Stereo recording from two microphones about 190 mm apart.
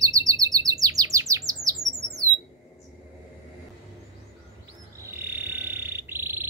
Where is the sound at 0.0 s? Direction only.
20° right (ahead or behind).